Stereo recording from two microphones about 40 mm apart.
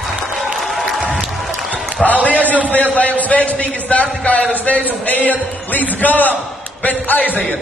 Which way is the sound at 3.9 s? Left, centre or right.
Left.